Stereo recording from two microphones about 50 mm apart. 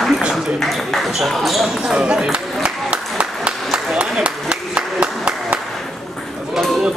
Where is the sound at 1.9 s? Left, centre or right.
Centre.